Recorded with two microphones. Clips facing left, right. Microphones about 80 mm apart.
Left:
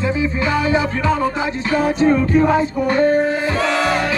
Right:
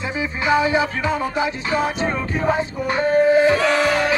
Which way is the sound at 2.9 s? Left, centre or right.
Right.